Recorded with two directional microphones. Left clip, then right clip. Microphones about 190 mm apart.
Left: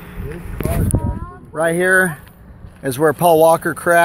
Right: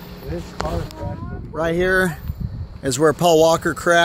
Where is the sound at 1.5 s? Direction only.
5° left (ahead or behind).